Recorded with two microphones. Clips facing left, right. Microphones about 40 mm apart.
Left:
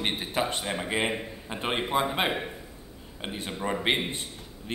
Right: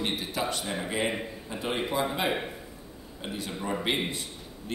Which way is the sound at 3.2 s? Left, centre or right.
Left.